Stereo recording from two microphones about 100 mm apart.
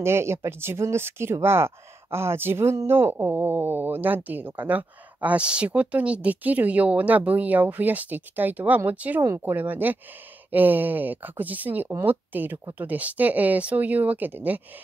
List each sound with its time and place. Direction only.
0.0 s speech: 25° right (ahead or behind)